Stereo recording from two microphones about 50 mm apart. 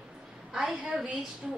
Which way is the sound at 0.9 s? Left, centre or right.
Centre.